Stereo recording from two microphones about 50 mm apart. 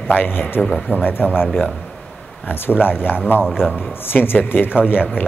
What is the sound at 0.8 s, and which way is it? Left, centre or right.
Speech, left.